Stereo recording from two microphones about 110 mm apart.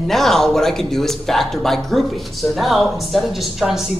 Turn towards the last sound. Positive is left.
turn(degrees=0)  # may be behind; listen again after turning